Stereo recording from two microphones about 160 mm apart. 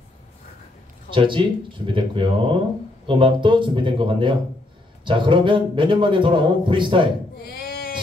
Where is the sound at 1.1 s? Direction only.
30° right (ahead or behind).